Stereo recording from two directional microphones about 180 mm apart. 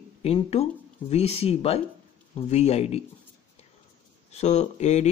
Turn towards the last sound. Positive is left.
turn(degrees=40)  # may be behind; listen again after turning